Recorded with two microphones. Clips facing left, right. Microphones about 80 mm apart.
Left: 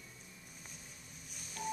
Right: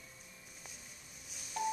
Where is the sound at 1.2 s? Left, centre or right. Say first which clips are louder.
Right 6 dB; centre.